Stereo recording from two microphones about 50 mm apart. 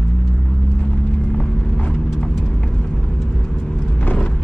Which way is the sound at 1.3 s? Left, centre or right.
Left.